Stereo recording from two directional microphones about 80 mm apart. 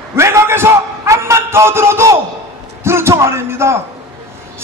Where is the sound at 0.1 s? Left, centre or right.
Right.